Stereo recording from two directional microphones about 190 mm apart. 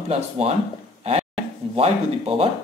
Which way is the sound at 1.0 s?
35° right (ahead or behind).